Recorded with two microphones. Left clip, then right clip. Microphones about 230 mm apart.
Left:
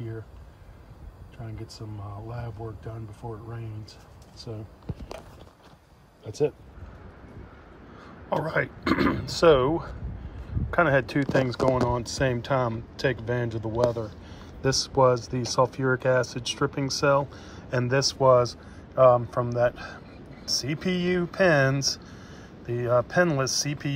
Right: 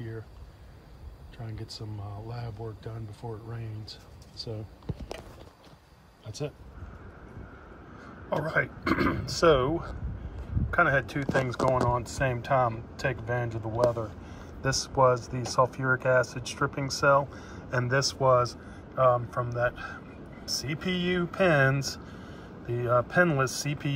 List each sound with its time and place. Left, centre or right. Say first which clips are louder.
6.2 s speech: left 11 dB; right
8.3 s speech: left 2 dB; centre